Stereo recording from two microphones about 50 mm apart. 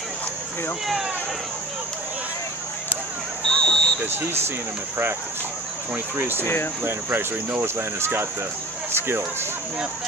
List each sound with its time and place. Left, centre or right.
3.4 s a sound: centre
4.0 s speech: right
6.1 s speech: right
6.4 s speech: left
6.8 s speech: right